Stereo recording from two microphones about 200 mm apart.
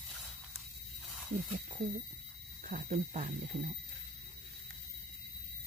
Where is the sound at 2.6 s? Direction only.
40° right (ahead or behind).